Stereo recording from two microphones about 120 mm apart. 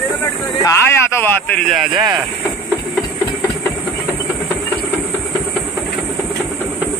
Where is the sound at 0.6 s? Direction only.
20° left (ahead or behind).